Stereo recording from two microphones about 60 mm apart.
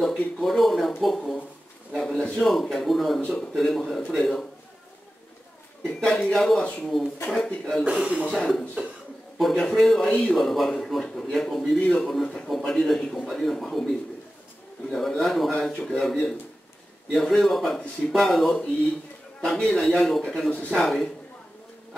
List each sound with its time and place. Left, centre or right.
0.1 s a man's voice: centre
3.2 s a man's voice: left
3.5 s a man's voice: centre
5.9 s a man's voice: centre
7.8 s speech: centre
9.4 s a man's voice: centre
10.0 s a man's voice: centre
10.3 s a man's voice: centre